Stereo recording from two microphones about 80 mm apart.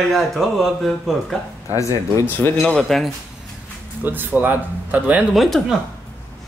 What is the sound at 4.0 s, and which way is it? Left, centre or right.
Speech, right.